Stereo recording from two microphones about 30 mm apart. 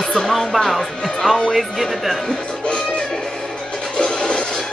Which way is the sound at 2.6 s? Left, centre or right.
Left.